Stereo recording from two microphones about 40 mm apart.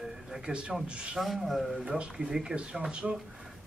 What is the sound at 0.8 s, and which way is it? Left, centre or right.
Speech, right.